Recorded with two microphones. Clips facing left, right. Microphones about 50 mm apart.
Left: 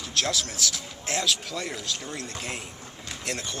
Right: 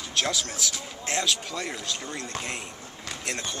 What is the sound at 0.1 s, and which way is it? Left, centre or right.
A man's voice, centre.